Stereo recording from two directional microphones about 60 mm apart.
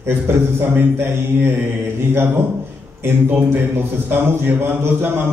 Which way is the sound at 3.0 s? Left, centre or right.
Right.